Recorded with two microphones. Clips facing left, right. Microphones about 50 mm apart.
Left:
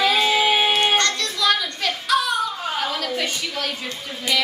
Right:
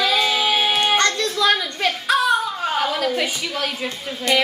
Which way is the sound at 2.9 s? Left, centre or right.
Centre.